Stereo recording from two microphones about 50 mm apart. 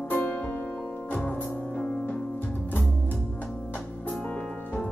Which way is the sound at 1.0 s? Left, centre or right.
Left.